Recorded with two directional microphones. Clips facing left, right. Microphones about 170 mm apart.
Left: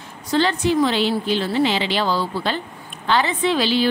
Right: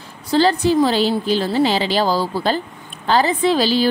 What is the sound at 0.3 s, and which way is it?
A woman's voice, 35° right (ahead or behind).